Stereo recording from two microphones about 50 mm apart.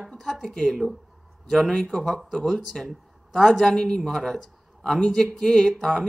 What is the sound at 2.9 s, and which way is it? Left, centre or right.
Speech, centre.